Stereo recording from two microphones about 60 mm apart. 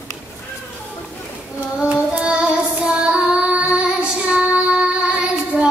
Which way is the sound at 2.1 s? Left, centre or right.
Centre.